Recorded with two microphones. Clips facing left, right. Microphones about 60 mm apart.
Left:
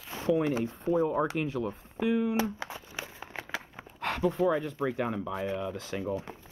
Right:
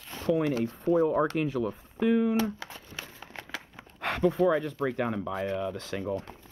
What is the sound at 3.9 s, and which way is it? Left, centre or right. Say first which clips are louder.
Speech: right 3 dB; centre.